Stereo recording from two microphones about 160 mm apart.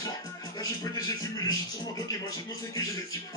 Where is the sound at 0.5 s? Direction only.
20° left (ahead or behind).